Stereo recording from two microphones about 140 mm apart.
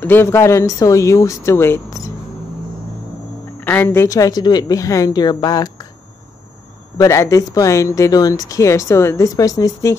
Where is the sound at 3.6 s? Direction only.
15° left (ahead or behind).